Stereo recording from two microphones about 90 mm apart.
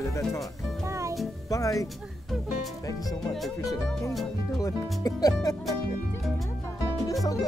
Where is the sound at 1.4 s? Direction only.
40° left (ahead or behind).